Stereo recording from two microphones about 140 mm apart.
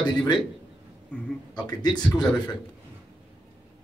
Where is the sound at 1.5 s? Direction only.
30° left (ahead or behind).